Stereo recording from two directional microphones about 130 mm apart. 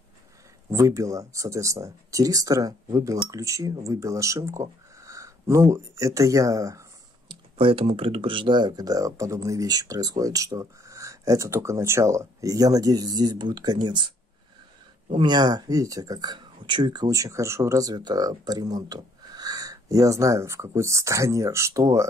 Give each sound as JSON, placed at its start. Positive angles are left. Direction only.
{"t": 0.7, "sound": "speech", "side_deg": -25}
{"t": 7.2, "sound": "speech", "side_deg": -45}
{"t": 15.1, "sound": "speech", "side_deg": -35}